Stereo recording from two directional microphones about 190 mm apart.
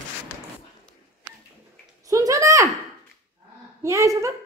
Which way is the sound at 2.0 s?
15° right (ahead or behind).